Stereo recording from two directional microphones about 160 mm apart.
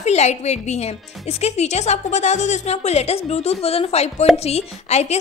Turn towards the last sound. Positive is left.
turn(degrees=45)  # may be behind; listen again after turning